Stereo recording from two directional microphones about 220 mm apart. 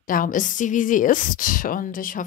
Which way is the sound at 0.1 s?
40° left (ahead or behind).